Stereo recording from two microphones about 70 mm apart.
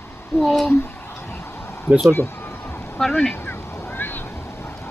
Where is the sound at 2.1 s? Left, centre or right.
Left.